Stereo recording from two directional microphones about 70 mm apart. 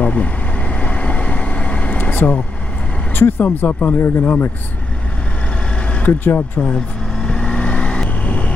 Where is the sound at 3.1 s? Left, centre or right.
Left.